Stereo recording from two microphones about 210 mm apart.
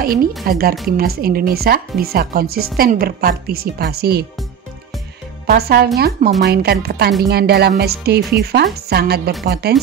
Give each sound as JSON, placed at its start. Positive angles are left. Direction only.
{"t": 0.0, "sound": "speech", "side_deg": -45}
{"t": 5.5, "sound": "speech", "side_deg": -45}